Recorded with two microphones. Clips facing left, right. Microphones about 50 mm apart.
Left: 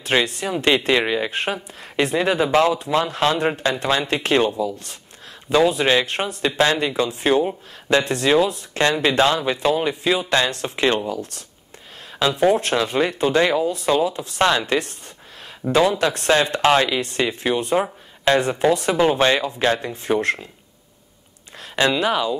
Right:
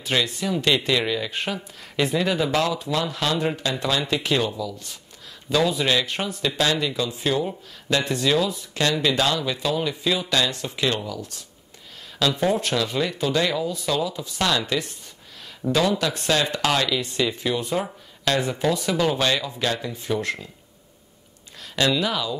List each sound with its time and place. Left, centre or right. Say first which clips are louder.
0.0 s speech: left 4 dB; left
7.3 s speech: left 6 dB; left
8.0 s speech: left 3 dB; left
12.2 s speech: left 4 dB; left
12.5 s speech: left 4 dB; left
15.6 s speech: left 4 dB; left
16.3 s speech: left 6 dB; left
17.0 s speech: left 2 dB; left
21.7 s speech: left 4 dB; left